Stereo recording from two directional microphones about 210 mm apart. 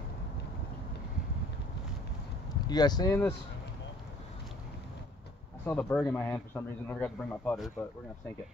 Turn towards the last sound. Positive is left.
turn(degrees=5)  # may be behind; listen again after turning